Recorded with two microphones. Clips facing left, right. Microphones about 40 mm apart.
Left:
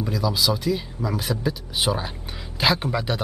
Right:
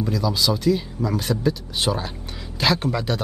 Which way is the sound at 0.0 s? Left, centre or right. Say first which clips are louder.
Right 1 dB; centre.